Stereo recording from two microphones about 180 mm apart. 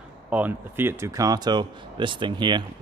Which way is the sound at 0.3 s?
10° right (ahead or behind).